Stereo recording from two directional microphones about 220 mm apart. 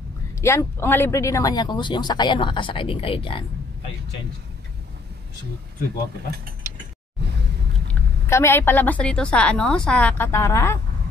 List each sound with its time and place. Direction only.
0.4 s speech: 10° left (ahead or behind)
7.9 s a woman's voice: 10° left (ahead or behind)